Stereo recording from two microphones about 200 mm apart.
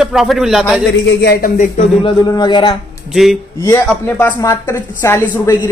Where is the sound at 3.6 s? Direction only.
10° left (ahead or behind).